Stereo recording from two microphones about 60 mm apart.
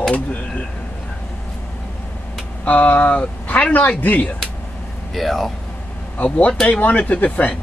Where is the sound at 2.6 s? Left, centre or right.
Left.